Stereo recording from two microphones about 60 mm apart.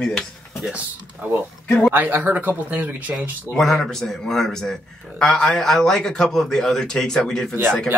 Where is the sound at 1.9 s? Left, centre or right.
Right.